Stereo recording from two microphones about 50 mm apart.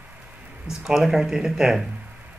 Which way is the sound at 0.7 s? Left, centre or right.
Centre.